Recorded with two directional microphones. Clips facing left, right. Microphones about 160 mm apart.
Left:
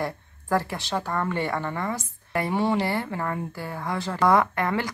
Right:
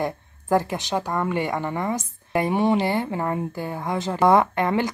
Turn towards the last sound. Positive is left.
turn(degrees=-20)  # may be behind; listen again after turning